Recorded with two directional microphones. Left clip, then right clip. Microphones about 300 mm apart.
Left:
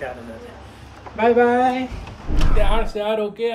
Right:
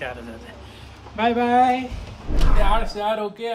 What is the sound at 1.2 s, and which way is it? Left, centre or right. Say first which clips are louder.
Speech: left 5 dB; centre.